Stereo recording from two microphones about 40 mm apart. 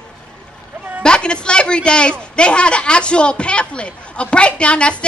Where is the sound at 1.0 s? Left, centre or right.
Left.